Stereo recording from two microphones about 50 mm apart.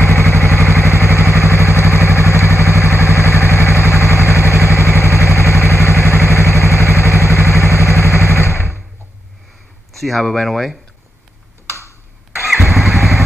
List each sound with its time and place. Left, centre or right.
0.0 s vehicle: left
1.2 s vehicle: right
1.5 s vehicle: left
8.3 s a sound: left
9.9 s speech: centre
12.4 s motorcycle: centre